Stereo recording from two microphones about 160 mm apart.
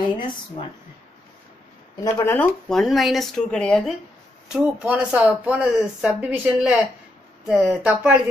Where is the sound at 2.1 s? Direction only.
15° left (ahead or behind).